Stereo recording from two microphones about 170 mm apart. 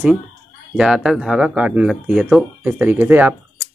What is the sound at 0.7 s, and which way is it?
Speech, 5° right (ahead or behind).